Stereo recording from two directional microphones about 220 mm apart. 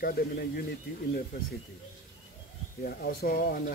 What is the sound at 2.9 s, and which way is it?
Speech, 45° left (ahead or behind).